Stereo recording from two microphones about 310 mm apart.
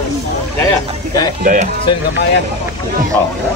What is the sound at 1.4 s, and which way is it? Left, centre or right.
Speech, right.